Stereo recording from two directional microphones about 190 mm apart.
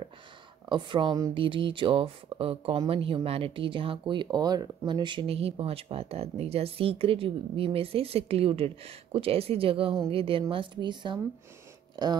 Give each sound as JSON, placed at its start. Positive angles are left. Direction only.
{"t": 0.7, "sound": "speech", "side_deg": -25}